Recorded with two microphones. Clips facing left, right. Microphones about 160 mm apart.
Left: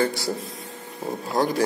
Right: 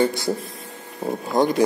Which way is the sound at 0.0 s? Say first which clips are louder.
Right 3 dB; 20° right (ahead or behind).